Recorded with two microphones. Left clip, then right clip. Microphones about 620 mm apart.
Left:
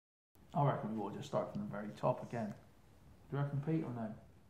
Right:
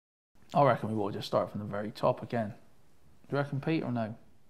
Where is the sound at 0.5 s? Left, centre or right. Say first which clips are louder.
Right 11 dB; right.